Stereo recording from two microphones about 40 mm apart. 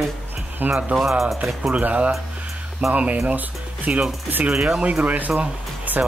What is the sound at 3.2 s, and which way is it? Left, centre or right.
Speech, right.